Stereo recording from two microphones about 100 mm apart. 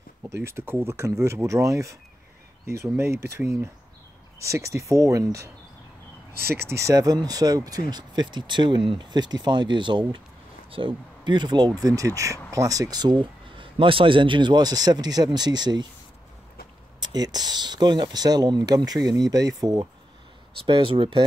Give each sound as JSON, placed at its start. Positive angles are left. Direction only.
{"t": 0.3, "sound": "speech", "side_deg": -25}
{"t": 6.6, "sound": "speech", "side_deg": -30}
{"t": 17.0, "sound": "speech", "side_deg": -45}
{"t": 20.6, "sound": "speech", "side_deg": -60}